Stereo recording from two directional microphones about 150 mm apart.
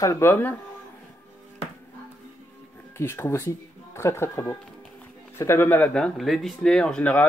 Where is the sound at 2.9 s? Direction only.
15° left (ahead or behind).